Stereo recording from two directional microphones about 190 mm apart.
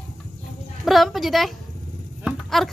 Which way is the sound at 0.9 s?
Centre (ahead or behind).